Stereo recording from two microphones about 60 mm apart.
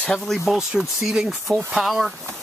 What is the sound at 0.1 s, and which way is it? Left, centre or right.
Speech, centre.